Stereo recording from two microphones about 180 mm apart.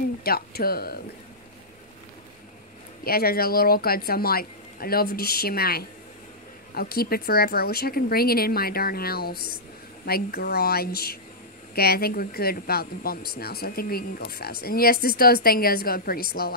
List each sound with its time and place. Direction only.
0.2 s speech: 55° left (ahead or behind)
3.0 s speech: 55° left (ahead or behind)